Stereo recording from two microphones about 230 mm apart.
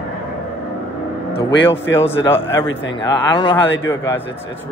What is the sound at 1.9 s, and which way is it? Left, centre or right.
Speech, left.